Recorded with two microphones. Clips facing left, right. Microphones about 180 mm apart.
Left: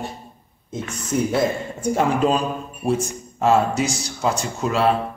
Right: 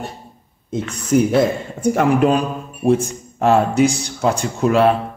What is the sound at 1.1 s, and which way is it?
Speech, 80° right.